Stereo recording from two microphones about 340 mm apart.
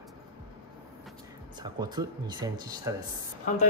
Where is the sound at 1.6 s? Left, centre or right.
Centre.